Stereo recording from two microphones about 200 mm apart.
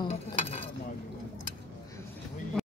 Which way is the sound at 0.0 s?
30° left (ahead or behind).